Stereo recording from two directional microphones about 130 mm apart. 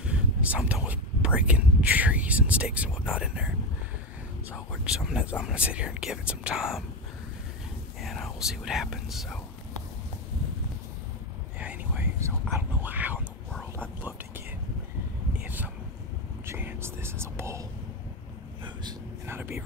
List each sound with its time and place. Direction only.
0.0 s speech: 10° right (ahead or behind)
8.0 s speech: centre (ahead or behind)
11.6 s whispering: 10° right (ahead or behind)
15.4 s a sound: 15° right (ahead or behind)
16.4 s whispering: 15° right (ahead or behind)
19.2 s whispering: 20° right (ahead or behind)